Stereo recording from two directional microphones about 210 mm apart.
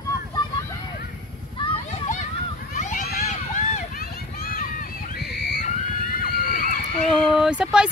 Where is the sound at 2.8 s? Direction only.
35° left (ahead or behind).